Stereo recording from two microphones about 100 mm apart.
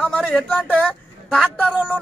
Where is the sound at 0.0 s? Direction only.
10° left (ahead or behind).